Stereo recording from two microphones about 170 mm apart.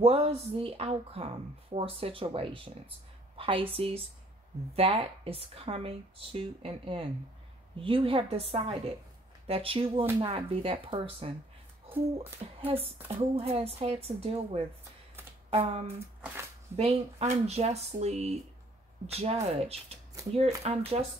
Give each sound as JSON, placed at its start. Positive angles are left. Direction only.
{"t": 0.0, "sound": "speech", "side_deg": -35}
{"t": 12.5, "sound": "speech", "side_deg": -35}